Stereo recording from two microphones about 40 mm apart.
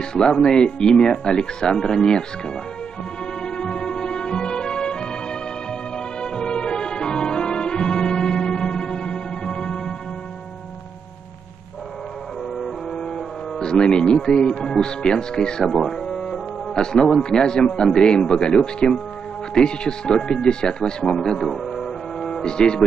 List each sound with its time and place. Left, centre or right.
0.0 s speech: centre
3.4 s music: left
12.9 s speech: centre
15.6 s music: centre
17.2 s speech: left; by 21.6 s centre
21.6 s music: centre